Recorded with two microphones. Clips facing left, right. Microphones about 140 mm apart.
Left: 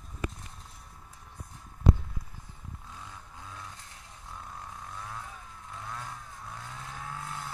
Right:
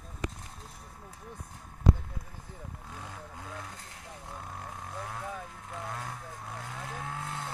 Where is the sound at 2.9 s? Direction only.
60° right (ahead or behind).